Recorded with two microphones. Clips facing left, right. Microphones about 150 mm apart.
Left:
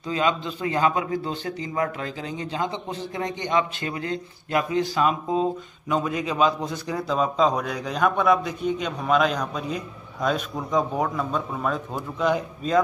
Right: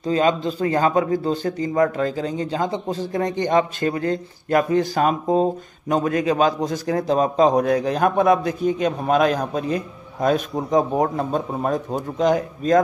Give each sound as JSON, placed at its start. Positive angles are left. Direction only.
{"t": 0.0, "sound": "a man's voice", "side_deg": -40}